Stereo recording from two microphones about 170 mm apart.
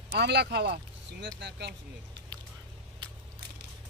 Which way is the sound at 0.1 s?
80° right.